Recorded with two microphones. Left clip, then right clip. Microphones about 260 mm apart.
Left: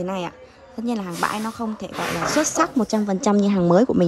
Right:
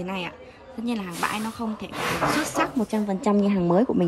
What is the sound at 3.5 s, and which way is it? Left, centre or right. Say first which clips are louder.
Speech: left 4 dB; right.